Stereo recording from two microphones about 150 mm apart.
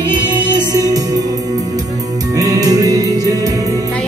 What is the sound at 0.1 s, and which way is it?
Music, 25° right (ahead or behind).